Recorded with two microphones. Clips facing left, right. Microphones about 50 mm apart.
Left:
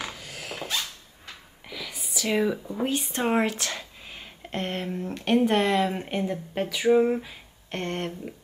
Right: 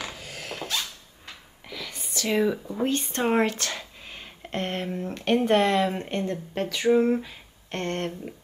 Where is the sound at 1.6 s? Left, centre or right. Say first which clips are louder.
Even; centre.